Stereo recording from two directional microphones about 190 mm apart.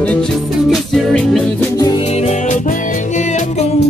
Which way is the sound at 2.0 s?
35° left (ahead or behind).